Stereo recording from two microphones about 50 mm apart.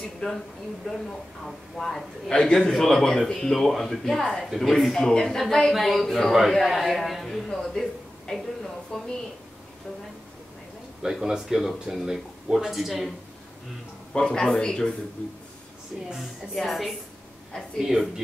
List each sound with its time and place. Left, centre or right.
0.2 s a man's voice: centre
1.4 s a man's voice: centre
11.1 s speech: centre
14.1 s a man's voice: centre
16.2 s a man's voice: centre